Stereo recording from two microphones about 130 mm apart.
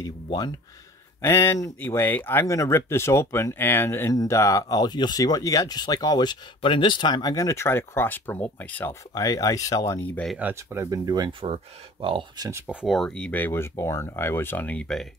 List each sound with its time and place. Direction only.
0.0 s speech: 30° left (ahead or behind)
1.2 s speech: 20° left (ahead or behind)
9.1 s speech: 25° left (ahead or behind)
10.0 s speech: 10° left (ahead or behind)
10.4 s speech: 20° right (ahead or behind); by 12.4 s 40° right (ahead or behind)
12.6 s speech: centre (ahead or behind)